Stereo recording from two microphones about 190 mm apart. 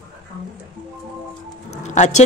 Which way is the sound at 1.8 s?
40° left (ahead or behind).